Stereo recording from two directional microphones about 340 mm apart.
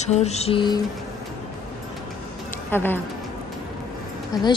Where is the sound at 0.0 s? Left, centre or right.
Centre.